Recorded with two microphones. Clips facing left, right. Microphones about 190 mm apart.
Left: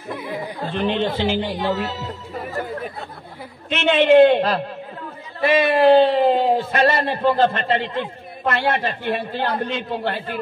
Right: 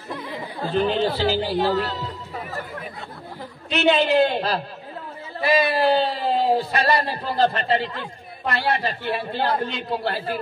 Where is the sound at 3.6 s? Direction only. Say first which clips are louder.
Left 3 dB; 35° right (ahead or behind).